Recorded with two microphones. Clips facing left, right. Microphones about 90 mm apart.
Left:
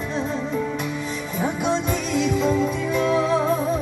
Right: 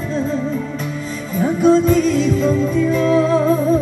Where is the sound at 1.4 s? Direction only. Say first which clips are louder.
Right 10 dB; 15° left (ahead or behind).